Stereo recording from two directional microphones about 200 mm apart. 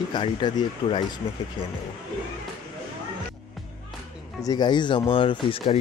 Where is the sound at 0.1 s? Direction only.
20° left (ahead or behind).